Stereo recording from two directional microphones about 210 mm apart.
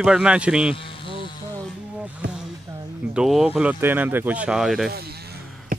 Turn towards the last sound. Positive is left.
turn(degrees=-50)  # may be behind; listen again after turning